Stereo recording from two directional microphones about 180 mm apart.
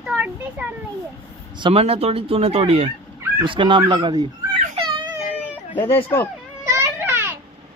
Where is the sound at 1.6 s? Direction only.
35° right (ahead or behind).